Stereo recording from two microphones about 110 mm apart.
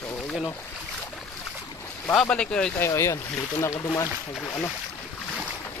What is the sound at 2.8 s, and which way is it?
Speech, 25° left (ahead or behind).